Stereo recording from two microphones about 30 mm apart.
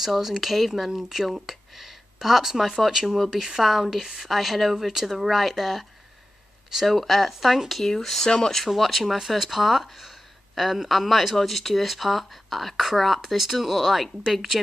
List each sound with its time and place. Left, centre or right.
0.0 s speech: centre
3.9 s speech: centre
6.9 s speech: centre
8.2 s speech: left
8.6 s speech: centre